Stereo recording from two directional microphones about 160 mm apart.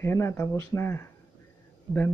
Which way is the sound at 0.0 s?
15° left (ahead or behind).